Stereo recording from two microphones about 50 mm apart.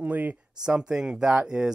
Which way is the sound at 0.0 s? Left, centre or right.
Right.